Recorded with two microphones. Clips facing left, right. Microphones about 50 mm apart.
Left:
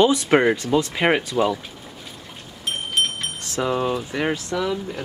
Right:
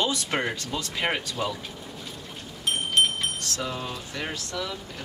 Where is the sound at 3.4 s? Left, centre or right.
Left.